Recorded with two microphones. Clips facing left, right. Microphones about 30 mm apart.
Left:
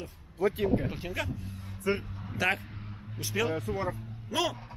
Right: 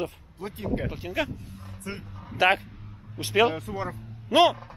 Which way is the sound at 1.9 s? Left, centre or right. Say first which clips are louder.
Left 8 dB; centre.